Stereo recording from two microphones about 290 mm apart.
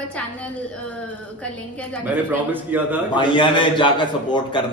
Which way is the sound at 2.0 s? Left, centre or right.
Centre.